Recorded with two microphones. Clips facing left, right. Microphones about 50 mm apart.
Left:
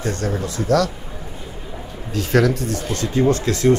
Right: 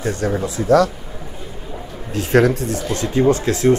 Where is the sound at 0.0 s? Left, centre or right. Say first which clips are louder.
Right 3 dB; centre.